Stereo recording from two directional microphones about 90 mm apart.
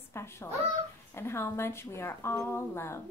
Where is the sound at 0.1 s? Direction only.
30° left (ahead or behind).